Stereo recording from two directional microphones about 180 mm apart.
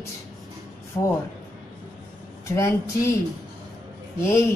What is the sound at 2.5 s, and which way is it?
Speech, 15° left (ahead or behind).